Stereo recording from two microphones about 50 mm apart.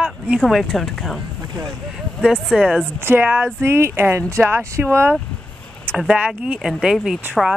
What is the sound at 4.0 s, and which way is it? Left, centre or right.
Speech, right.